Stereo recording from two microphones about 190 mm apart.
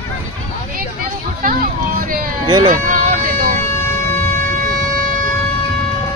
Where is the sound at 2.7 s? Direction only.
45° right (ahead or behind).